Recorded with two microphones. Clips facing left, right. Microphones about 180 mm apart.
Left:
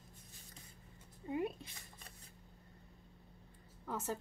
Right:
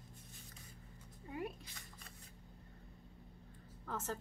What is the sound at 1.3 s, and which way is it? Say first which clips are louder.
Speech: left 6 dB; 20° left (ahead or behind).